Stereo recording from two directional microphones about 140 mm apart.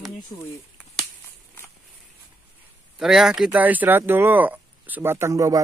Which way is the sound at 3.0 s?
5° right (ahead or behind).